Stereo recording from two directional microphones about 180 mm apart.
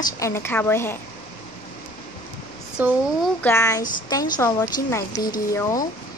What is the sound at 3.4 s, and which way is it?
A woman's voice, 15° left (ahead or behind).